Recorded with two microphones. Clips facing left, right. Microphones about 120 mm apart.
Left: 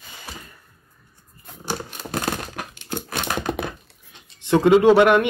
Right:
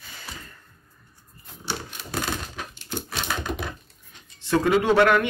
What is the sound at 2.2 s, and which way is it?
Crumpling, 60° left (ahead or behind).